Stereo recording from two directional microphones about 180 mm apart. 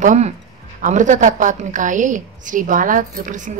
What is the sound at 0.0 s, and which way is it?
A woman's voice, 40° right (ahead or behind).